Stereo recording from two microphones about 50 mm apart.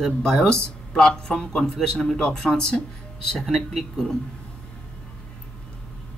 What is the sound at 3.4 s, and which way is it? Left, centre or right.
Speech, centre.